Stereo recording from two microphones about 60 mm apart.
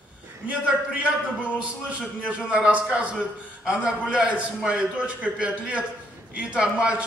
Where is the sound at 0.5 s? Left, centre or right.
Centre.